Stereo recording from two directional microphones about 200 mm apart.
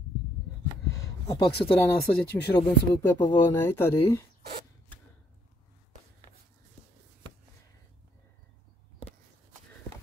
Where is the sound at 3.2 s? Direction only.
15° left (ahead or behind).